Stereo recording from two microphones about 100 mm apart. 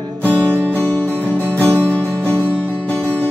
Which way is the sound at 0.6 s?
15° left (ahead or behind).